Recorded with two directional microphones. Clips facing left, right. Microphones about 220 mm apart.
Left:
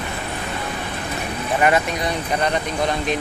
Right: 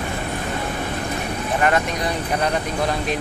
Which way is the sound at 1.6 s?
5° left (ahead or behind).